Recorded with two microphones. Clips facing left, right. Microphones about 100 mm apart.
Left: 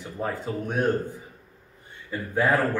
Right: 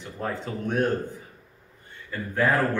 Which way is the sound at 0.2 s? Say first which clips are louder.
Left 1 dB; 10° left (ahead or behind).